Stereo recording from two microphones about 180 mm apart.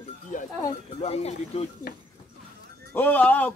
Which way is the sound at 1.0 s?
35° left (ahead or behind).